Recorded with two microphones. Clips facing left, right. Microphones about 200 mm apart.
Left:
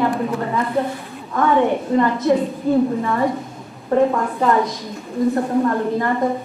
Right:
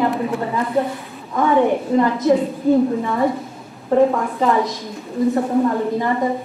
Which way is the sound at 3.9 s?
Centre (ahead or behind).